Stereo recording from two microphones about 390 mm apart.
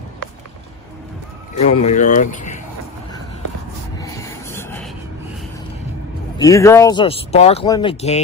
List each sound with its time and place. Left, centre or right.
1.6 s speech: centre
4.0 s a sound: centre
6.3 s speech: centre